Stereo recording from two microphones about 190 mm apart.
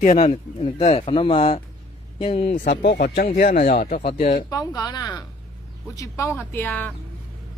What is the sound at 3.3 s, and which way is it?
Speech, 45° left (ahead or behind).